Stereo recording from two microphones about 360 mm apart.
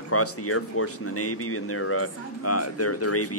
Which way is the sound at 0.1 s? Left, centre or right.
Left.